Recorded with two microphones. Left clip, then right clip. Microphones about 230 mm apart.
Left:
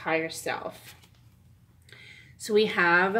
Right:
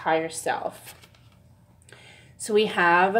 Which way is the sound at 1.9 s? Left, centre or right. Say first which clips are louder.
Even; right.